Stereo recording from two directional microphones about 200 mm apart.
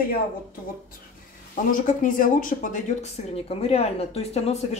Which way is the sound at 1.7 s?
40° left (ahead or behind).